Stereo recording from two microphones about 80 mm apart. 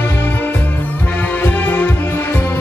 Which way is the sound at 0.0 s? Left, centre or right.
Left.